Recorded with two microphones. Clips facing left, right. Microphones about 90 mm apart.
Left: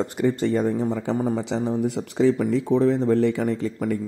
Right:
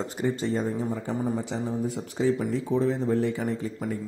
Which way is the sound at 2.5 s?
70° left (ahead or behind).